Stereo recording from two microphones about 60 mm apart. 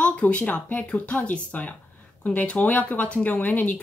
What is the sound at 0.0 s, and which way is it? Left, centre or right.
Speech, left.